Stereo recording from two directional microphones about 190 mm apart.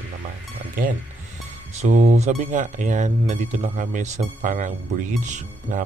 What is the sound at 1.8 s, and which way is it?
Speech, 35° right (ahead or behind).